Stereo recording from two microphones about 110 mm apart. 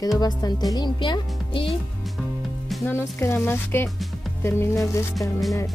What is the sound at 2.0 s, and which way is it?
Music, centre (ahead or behind).